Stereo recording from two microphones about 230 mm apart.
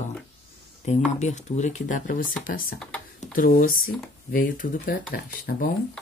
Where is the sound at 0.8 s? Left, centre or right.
Left.